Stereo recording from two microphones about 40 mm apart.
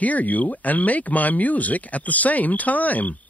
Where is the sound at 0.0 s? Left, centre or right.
Left.